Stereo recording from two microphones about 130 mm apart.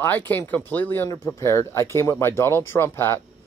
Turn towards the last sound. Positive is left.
turn(degrees=20)  # may be behind; listen again after turning